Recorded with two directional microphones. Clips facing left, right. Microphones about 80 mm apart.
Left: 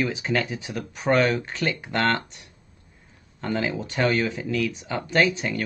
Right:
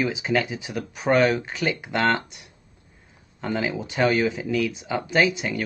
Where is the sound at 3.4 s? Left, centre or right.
Centre.